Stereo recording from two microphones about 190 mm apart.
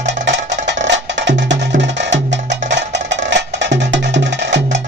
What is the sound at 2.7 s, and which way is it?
Music, 70° right (ahead or behind).